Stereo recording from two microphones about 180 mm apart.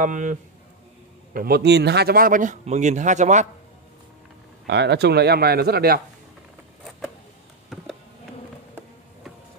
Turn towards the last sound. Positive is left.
turn(degrees=0)  # may be behind; listen again after turning